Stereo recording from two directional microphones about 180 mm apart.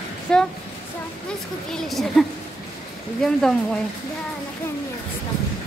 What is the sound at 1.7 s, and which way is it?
Speech, centre (ahead or behind).